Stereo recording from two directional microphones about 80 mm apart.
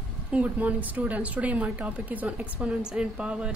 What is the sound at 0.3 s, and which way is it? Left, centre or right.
A woman's voice, centre.